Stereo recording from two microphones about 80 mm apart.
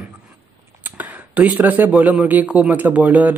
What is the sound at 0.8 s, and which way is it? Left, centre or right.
Speech, centre.